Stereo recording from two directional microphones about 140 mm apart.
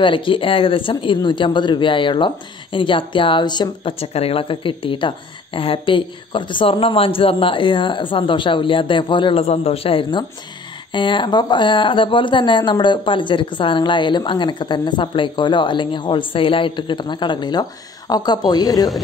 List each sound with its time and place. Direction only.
0.0 s speech: 35° left (ahead or behind)